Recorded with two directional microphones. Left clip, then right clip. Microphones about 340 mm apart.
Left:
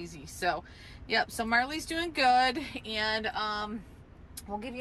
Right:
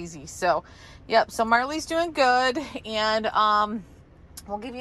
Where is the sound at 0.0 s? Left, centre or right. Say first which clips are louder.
Right 6 dB; centre.